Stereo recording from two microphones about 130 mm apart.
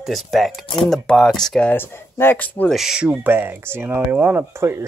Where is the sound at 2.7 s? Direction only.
5° right (ahead or behind).